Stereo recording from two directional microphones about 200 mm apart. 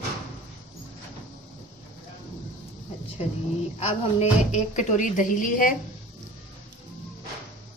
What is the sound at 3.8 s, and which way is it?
A woman's voice, 30° left (ahead or behind).